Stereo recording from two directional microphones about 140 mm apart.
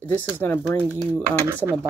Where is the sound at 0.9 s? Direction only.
15° right (ahead or behind).